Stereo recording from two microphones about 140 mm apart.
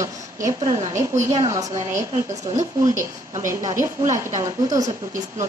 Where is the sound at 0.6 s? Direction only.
45° right (ahead or behind).